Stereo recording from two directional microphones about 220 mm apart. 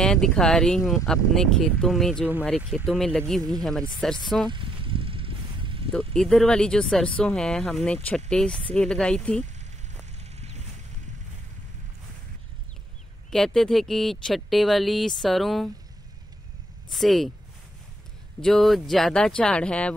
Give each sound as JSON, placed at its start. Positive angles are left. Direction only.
{"t": 0.0, "sound": "speech", "side_deg": 0}
{"t": 4.5, "sound": "a sound", "side_deg": -25}
{"t": 5.9, "sound": "speech", "side_deg": 0}
{"t": 10.1, "sound": "a sound", "side_deg": -30}
{"t": 13.3, "sound": "speech", "side_deg": 0}
{"t": 16.9, "sound": "speech", "side_deg": 0}
{"t": 18.4, "sound": "speech", "side_deg": 0}